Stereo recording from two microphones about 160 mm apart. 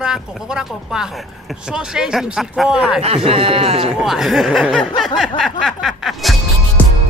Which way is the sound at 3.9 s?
Centre (ahead or behind).